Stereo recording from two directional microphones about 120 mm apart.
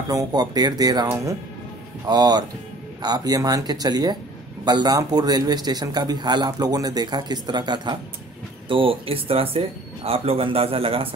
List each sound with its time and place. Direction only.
0.1 s speech: 30° right (ahead or behind)
2.0 s speech: 35° right (ahead or behind); by 11.1 s 50° right (ahead or behind)